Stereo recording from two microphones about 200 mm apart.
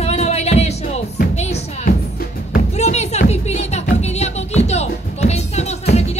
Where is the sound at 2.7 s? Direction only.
35° left (ahead or behind).